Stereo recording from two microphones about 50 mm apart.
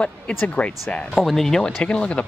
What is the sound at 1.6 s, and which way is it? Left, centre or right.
Speech, left.